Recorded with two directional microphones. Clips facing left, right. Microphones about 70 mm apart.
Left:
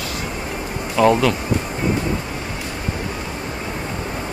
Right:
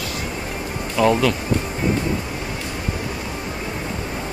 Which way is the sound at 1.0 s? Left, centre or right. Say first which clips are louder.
Left 3 dB; left.